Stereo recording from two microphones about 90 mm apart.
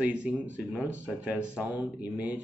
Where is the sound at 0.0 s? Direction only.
15° right (ahead or behind).